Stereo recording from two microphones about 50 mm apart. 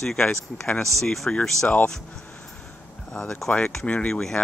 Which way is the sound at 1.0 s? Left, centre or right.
Centre.